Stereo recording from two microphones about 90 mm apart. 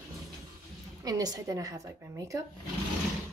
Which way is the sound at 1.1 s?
45° right (ahead or behind).